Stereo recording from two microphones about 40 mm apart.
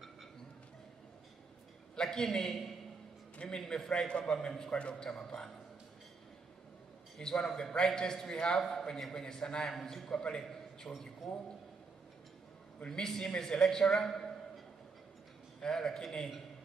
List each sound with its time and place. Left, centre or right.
2.0 s a man's voice: centre
4.6 s a man's voice: left
7.2 s a man's voice: centre
12.8 s a man's voice: centre
15.6 s a man's voice: centre